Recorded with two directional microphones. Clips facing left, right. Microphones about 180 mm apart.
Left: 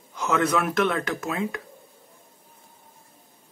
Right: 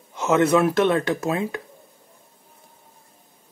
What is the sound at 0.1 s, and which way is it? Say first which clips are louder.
Speech: right 5 dB; 25° right (ahead or behind).